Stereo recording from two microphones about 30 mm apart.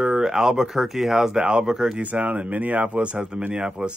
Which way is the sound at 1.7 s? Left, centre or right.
Right.